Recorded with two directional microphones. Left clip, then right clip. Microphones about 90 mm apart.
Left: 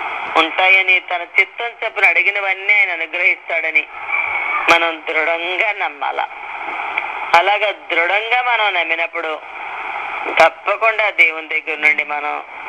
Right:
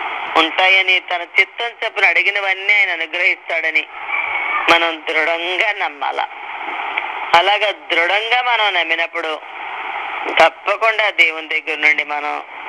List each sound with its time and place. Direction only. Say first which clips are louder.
0.0 s speech: even; 35° right (ahead or behind); by 3.7 s 50° right (ahead or behind)
4.1 s speech: even; 35° right (ahead or behind)
9.9 s radio: even; 30° right (ahead or behind)
10.6 s speech: even; 45° right (ahead or behind)